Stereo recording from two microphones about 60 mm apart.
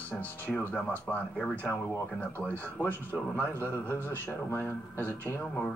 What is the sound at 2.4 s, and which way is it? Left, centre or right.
Speech, left.